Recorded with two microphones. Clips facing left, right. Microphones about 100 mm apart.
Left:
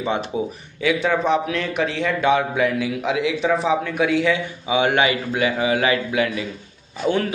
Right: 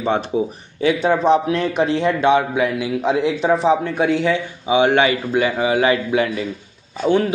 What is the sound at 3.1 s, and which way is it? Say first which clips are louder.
Speech: right 4 dB; 45° right (ahead or behind).